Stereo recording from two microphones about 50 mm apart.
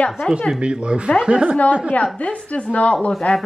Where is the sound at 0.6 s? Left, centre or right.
Right.